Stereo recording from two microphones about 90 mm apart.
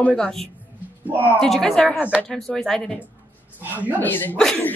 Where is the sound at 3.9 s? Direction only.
20° left (ahead or behind).